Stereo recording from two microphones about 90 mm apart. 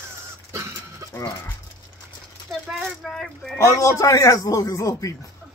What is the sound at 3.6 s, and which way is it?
A man's voice, 35° left (ahead or behind).